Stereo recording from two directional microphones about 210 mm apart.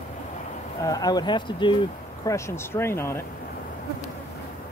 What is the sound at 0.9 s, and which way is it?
Speech, 20° left (ahead or behind).